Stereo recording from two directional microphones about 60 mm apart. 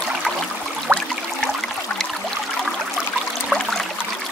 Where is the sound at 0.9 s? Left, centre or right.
Right.